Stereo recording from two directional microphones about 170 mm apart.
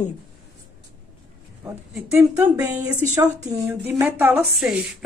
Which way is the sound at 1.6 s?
10° right (ahead or behind).